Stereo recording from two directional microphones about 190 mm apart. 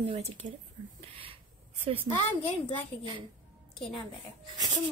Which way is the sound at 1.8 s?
30° right (ahead or behind).